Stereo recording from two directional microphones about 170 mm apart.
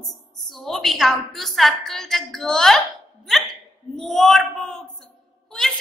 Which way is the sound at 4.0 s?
Centre (ahead or behind).